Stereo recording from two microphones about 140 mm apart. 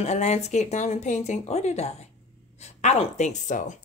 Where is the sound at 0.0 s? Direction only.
55° left (ahead or behind).